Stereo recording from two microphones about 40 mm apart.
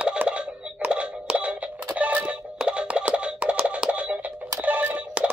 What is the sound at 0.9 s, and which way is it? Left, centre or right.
Music, right.